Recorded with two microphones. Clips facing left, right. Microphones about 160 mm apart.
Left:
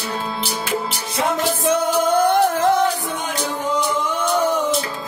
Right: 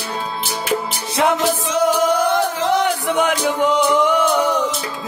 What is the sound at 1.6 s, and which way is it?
Music, 55° left (ahead or behind).